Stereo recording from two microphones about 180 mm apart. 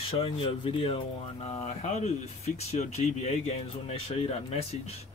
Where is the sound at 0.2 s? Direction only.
30° left (ahead or behind).